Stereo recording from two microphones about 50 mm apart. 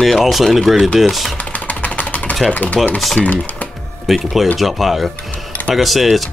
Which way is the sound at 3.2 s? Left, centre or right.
Left.